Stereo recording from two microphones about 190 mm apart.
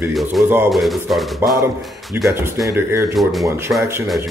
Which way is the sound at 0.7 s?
Centre (ahead or behind).